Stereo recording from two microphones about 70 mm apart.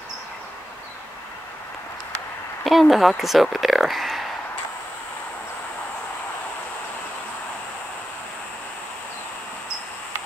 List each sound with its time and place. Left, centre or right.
2.6 s speech: centre